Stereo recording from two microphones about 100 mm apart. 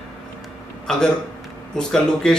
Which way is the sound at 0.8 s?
5° left (ahead or behind).